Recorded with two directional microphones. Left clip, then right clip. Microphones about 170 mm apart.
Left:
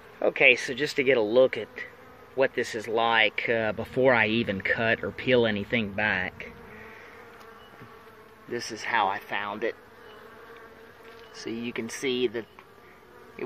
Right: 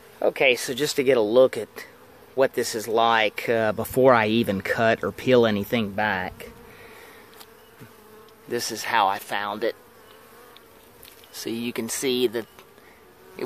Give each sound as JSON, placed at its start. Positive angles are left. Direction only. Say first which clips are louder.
{"t": 0.2, "sound": "speech", "louder": "even", "side_deg": -10}
{"t": 0.7, "sound": "speech", "louder": "right 3 dB", "side_deg": -35}
{"t": 8.5, "sound": "speech", "louder": "right 4 dB", "side_deg": -35}
{"t": 11.4, "sound": "speech", "louder": "right 4 dB", "side_deg": -30}